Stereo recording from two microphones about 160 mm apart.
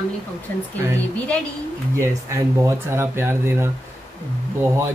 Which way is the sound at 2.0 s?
15° right (ahead or behind).